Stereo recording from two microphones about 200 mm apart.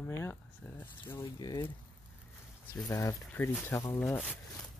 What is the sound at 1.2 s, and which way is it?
Speech, 20° left (ahead or behind).